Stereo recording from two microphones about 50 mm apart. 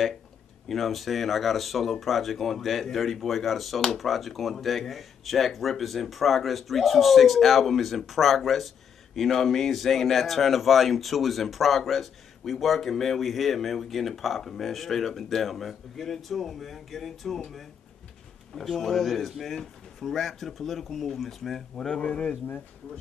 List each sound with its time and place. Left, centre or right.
0.7 s speech: centre
21.7 s speech: centre